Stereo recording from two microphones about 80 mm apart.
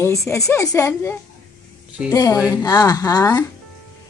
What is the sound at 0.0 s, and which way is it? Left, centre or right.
Speech, left.